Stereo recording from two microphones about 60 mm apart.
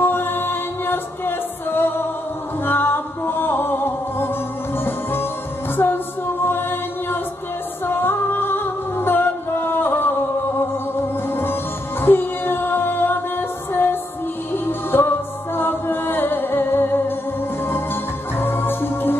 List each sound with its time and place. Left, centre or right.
0.0 s music: left
18.4 s music: left